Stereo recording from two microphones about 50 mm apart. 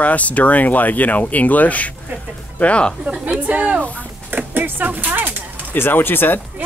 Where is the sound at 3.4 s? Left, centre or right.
Right.